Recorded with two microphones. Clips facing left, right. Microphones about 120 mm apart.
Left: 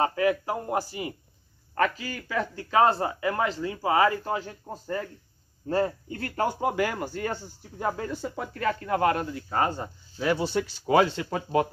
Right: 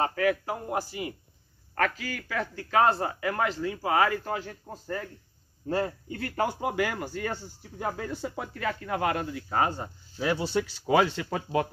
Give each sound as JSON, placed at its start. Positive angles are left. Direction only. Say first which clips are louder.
{"t": 0.0, "sound": "a man's voice", "louder": "left 2 dB", "side_deg": 25}
{"t": 10.9, "sound": "speech", "louder": "left 2 dB", "side_deg": 40}